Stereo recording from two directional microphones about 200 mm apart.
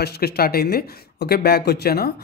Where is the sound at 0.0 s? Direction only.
55° left (ahead or behind).